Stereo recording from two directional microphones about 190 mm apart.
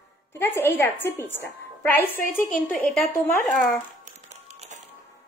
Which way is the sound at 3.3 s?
5° left (ahead or behind).